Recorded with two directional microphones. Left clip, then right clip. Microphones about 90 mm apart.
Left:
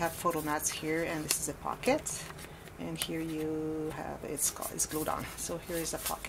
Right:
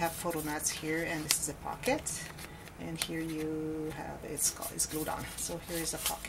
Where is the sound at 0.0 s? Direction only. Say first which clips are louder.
Left 2 dB; 30° left (ahead or behind).